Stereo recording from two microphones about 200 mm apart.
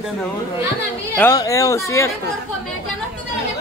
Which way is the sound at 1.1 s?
15° left (ahead or behind).